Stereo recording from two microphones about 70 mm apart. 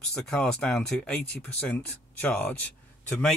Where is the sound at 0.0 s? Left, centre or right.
Centre.